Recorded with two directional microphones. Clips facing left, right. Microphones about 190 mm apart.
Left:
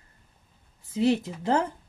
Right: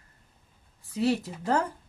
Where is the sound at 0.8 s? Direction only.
25° left (ahead or behind).